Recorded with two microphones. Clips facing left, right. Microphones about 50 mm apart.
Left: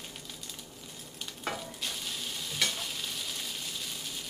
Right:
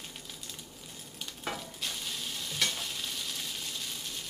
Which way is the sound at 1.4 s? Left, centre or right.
Centre.